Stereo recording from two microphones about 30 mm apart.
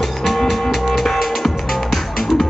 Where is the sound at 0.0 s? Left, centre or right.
Centre.